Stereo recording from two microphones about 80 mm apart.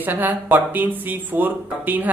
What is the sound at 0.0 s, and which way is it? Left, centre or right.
Speech, right.